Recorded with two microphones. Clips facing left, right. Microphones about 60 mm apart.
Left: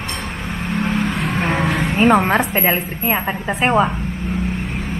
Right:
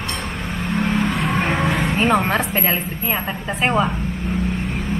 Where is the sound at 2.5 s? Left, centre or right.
Centre.